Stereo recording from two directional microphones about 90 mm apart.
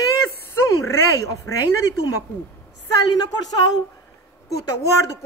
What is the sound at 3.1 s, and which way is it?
Speech, 45° left (ahead or behind).